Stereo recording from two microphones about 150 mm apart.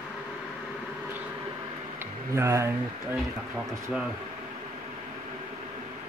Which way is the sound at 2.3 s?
20° right (ahead or behind).